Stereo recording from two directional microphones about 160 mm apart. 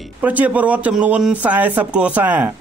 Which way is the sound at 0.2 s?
10° right (ahead or behind).